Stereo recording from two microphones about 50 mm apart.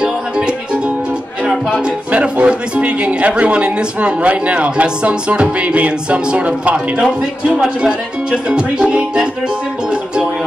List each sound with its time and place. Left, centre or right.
0.0 s music: centre
2.1 s a man's voice: right
7.0 s music: centre